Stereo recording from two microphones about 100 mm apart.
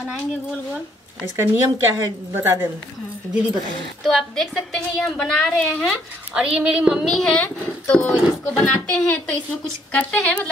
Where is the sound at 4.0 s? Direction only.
5° left (ahead or behind).